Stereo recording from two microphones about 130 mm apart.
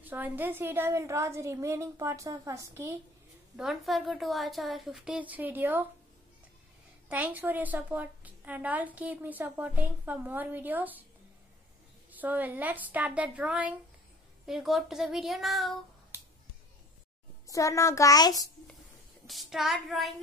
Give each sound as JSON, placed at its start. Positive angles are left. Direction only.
{"t": 0.0, "sound": "a woman's voice", "side_deg": -15}
{"t": 3.5, "sound": "a woman's voice", "side_deg": 0}
{"t": 7.1, "sound": "a woman's voice", "side_deg": -15}
{"t": 12.1, "sound": "a woman's voice", "side_deg": -15}
{"t": 16.1, "sound": "finger snapping", "side_deg": -20}
{"t": 17.5, "sound": "a child's voice", "side_deg": 25}
{"t": 19.2, "sound": "a woman's voice", "side_deg": 0}